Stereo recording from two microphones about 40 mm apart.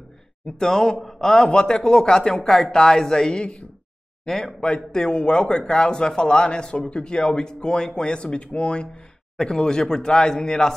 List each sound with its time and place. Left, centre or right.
0.5 s speech: centre
2.3 s a man's voice: centre